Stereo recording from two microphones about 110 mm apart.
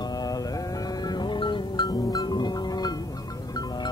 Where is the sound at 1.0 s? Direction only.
40° left (ahead or behind).